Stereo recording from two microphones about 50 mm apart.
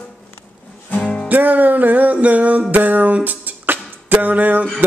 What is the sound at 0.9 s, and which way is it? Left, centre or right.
Music, left.